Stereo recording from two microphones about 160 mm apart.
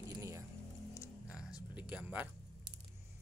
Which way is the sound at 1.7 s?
10° right (ahead or behind).